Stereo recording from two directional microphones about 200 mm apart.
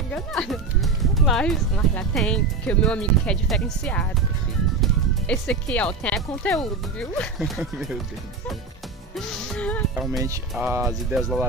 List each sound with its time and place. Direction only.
0.1 s speech: 5° left (ahead or behind)
5.2 s speech: 5° left (ahead or behind)
9.1 s music: 5° left (ahead or behind)
9.9 s speech: centre (ahead or behind)
10.7 s speech: 10° right (ahead or behind)
11.1 s speech: centre (ahead or behind)